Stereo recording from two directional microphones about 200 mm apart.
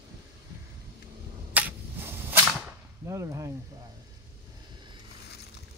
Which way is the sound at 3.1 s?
15° right (ahead or behind).